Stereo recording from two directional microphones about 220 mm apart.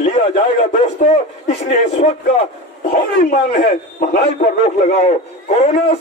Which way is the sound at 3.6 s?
35° left (ahead or behind).